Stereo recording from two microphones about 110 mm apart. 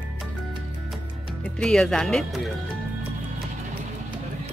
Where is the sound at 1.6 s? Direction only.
5° left (ahead or behind).